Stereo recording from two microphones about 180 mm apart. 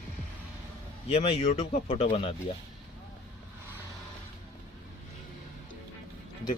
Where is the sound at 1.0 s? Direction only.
35° left (ahead or behind).